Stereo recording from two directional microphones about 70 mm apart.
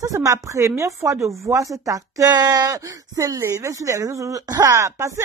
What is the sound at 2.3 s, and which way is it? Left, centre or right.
Speech, right.